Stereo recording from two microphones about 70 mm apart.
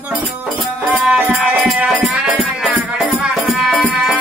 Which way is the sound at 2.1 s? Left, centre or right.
Centre.